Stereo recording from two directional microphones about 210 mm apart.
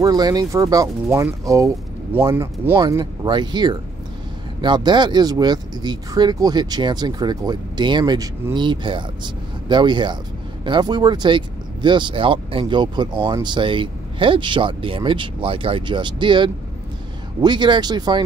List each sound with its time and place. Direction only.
0.0 s speech: 20° right (ahead or behind)
2.8 s speech: 20° right (ahead or behind)